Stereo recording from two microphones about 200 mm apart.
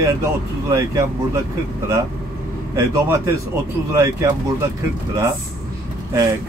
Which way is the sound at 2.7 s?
15° right (ahead or behind).